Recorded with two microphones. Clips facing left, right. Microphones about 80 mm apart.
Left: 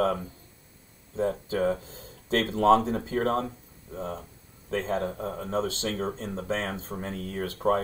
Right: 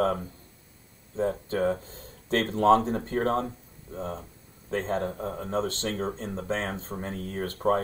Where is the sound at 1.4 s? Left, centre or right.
Right.